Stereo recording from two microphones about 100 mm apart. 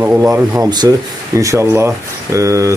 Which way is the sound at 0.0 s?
20° right (ahead or behind).